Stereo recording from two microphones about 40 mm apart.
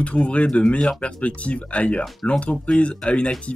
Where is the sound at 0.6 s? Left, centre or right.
Left.